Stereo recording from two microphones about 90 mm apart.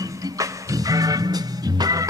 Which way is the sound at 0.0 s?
40° right (ahead or behind).